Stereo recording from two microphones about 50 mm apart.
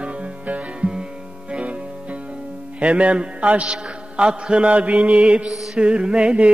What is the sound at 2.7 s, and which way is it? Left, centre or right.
Speech, right.